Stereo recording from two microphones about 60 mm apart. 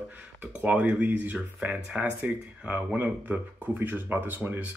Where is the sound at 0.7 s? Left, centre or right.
Right.